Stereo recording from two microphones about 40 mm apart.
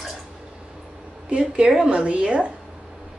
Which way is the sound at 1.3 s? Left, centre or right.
Right.